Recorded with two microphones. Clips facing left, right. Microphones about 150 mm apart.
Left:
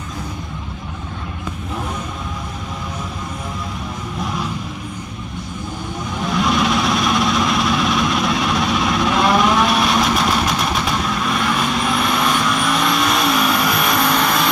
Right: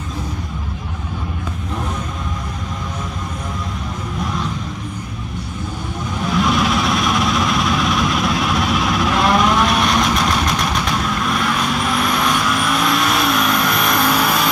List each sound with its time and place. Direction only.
6.2 s vehicle: centre (ahead or behind)